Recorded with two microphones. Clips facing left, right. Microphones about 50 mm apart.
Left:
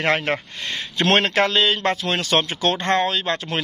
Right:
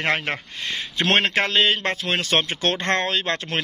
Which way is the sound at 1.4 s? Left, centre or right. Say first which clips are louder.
Left 2 dB; right.